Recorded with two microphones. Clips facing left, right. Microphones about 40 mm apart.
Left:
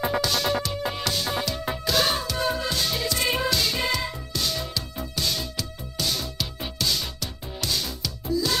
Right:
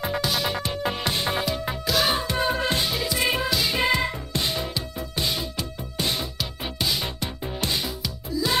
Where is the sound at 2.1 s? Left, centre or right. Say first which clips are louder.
Right 2 dB; right.